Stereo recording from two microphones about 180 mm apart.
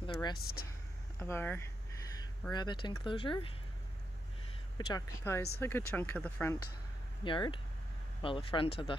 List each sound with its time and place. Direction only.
0.0 s a sound: 25° left (ahead or behind)
0.4 s speech: 60° left (ahead or behind)
1.2 s speech: 10° left (ahead or behind)
2.5 s speech: 25° left (ahead or behind)
4.7 s speech: 20° left (ahead or behind)
7.2 s speech: 25° left (ahead or behind)